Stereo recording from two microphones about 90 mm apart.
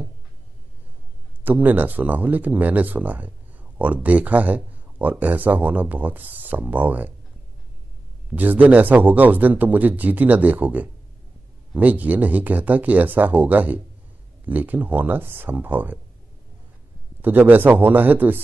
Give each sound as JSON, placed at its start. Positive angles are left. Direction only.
{"t": 1.4, "sound": "speech", "side_deg": -20}
{"t": 8.3, "sound": "speech", "side_deg": -20}
{"t": 17.2, "sound": "speech", "side_deg": -20}